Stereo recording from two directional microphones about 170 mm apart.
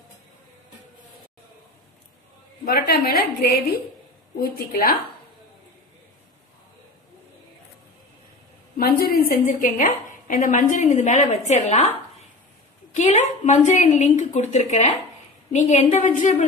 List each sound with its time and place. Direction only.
2.6 s a woman's voice: 65° left (ahead or behind)
8.7 s a woman's voice: 60° left (ahead or behind)
9.5 s a woman's voice: 50° left (ahead or behind)
12.9 s a woman's voice: 45° left (ahead or behind)